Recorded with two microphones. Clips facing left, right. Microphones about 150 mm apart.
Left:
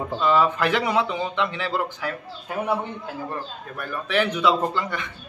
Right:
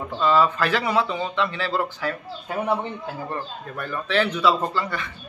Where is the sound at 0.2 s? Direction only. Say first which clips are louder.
Right 1 dB; 15° left (ahead or behind).